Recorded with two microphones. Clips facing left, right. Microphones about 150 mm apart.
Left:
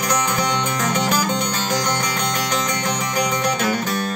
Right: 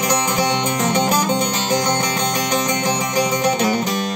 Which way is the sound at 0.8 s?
25° right (ahead or behind).